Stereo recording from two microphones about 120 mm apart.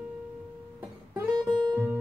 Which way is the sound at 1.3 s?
35° right (ahead or behind).